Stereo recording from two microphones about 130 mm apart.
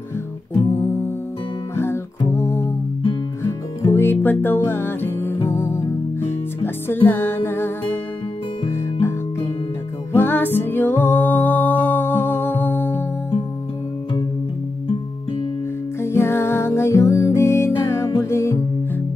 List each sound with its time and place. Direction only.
1.8 s music: 20° left (ahead or behind)
3.8 s music: 20° left (ahead or behind)
10.1 s music: 15° left (ahead or behind)
16.0 s music: 20° left (ahead or behind)